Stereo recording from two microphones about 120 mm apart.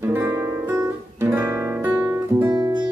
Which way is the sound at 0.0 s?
15° right (ahead or behind).